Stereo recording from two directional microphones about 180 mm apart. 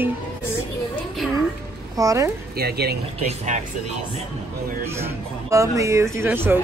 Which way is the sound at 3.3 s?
40° right (ahead or behind).